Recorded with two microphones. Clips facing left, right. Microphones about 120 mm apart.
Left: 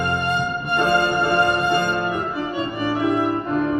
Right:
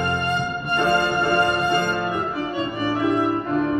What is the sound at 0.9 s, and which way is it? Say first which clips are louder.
Music: left 2 dB; 15° left (ahead or behind).